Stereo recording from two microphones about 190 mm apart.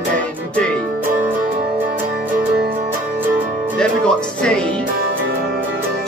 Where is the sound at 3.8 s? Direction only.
5° left (ahead or behind).